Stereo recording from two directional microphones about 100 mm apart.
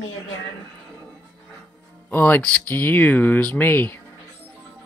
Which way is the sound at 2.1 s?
20° left (ahead or behind).